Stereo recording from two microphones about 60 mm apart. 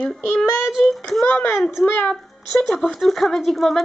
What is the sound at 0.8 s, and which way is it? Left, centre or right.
Speech, centre.